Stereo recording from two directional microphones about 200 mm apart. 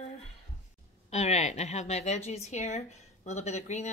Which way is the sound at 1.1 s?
35° left (ahead or behind).